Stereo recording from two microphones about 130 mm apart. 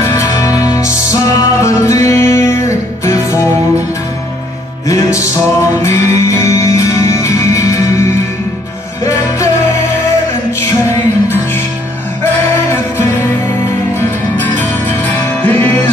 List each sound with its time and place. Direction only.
0.0 s music: 20° left (ahead or behind)
4.8 s music: 25° left (ahead or behind)
13.9 s music: 15° left (ahead or behind)